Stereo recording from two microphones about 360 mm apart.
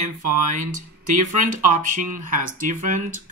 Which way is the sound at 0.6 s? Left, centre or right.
Right.